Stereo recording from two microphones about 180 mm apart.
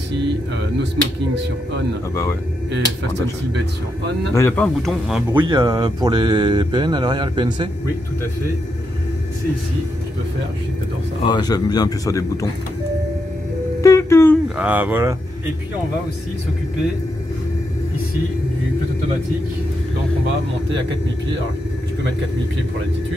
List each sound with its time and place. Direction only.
4.4 s a man's voice: 10° left (ahead or behind)
4.8 s speech: centre (ahead or behind)
5.4 s speech: 20° right (ahead or behind)
11.2 s speech: 25° left (ahead or behind)
13.7 s a sound: 15° left (ahead or behind)
14.6 s speech: 10° right (ahead or behind)